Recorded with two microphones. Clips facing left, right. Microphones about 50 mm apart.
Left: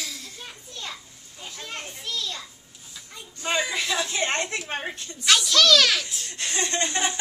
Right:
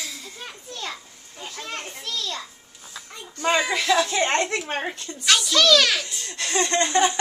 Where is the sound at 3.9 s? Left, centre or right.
Right.